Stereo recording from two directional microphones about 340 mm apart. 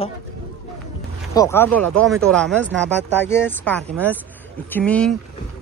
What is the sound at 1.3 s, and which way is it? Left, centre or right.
Speech, centre.